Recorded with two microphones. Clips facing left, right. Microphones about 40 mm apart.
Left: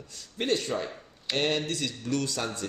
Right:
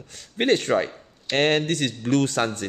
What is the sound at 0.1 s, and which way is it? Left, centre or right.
Speech, right.